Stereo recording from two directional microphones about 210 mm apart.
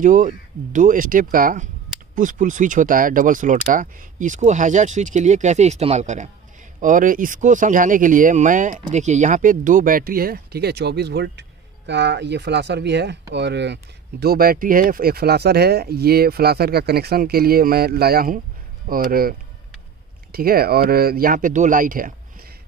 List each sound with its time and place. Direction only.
0.0 s speech: 40° right (ahead or behind)